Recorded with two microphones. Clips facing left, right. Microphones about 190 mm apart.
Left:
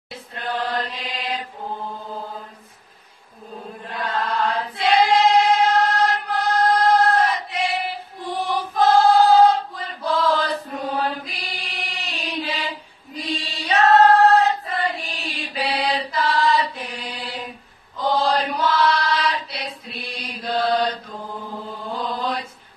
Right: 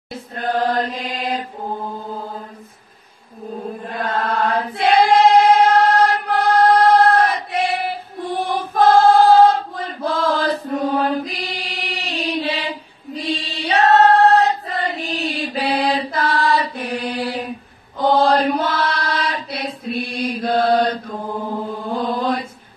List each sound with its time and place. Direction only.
0.1 s chant: 45° right (ahead or behind)
3.8 s choir: 50° right (ahead or behind)
11.1 s mantra: 40° right (ahead or behind)
13.1 s choir: 30° right (ahead or behind); by 17.4 s 55° right (ahead or behind)
17.9 s chant: 55° right (ahead or behind)
22.0 s mantra: 50° right (ahead or behind)